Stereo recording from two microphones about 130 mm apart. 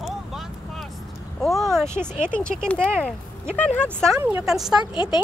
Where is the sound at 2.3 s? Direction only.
10° left (ahead or behind).